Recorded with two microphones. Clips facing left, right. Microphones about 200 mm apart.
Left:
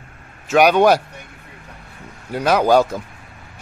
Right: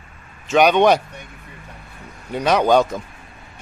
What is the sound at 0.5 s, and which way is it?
Speech, 5° left (ahead or behind).